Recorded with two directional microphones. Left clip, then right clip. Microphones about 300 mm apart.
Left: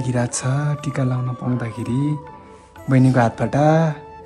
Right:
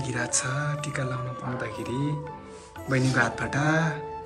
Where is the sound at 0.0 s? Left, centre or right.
Centre.